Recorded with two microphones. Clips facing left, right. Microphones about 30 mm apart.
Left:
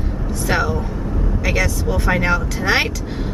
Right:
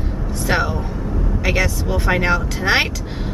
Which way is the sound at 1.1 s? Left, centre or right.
Centre.